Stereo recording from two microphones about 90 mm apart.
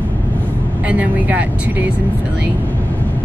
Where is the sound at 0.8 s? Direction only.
15° right (ahead or behind).